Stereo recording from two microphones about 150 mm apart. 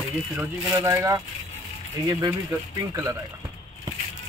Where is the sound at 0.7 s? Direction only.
20° right (ahead or behind).